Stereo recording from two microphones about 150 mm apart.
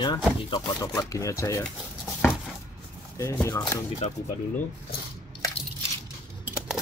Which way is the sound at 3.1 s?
20° left (ahead or behind).